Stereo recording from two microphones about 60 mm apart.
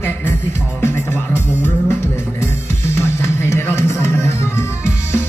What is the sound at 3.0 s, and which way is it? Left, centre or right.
Music, left.